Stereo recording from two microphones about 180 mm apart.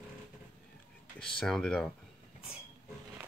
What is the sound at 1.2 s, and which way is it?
Speech, 5° left (ahead or behind).